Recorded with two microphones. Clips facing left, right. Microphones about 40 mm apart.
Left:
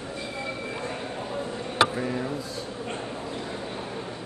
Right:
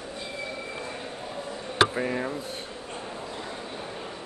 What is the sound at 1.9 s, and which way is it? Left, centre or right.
Speech, right.